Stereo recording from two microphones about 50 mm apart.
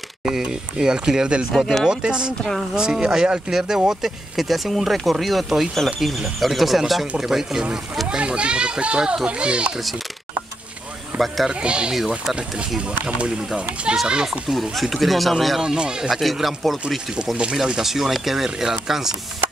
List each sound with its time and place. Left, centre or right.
0.2 s speech: centre
8.2 s speech: right
11.1 s speech: centre
11.6 s speech: right
14.0 s speech: centre
14.5 s speech: centre
15.6 s speech: centre
17.4 s speech: centre